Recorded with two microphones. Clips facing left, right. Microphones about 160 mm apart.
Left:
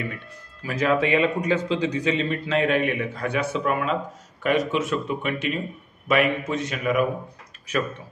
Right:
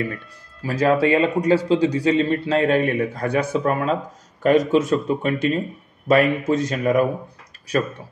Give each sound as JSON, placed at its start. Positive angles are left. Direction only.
{"t": 0.0, "sound": "speech", "side_deg": -35}